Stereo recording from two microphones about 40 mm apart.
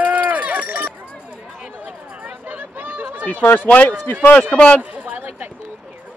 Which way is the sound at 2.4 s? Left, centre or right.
Right.